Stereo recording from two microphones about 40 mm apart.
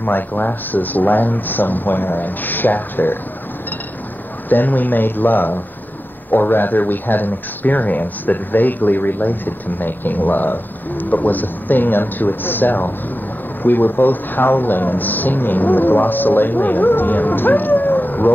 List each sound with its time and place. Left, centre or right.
0.0 s speech: left
4.5 s speech: left